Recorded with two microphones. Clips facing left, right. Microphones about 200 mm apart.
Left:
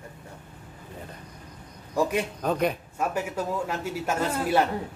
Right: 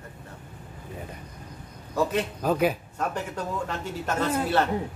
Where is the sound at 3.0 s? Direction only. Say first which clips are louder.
Left 2 dB; 10° left (ahead or behind).